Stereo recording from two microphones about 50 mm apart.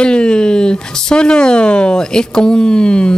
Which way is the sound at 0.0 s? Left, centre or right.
Centre.